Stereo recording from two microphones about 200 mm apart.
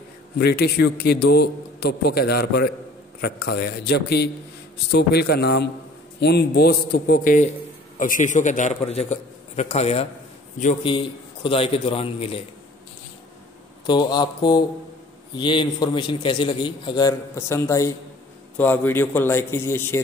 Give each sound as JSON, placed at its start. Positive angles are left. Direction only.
{"t": 0.4, "sound": "a man's voice", "side_deg": 50}
{"t": 10.9, "sound": "a man's voice", "side_deg": 25}
{"t": 13.8, "sound": "a man's voice", "side_deg": 20}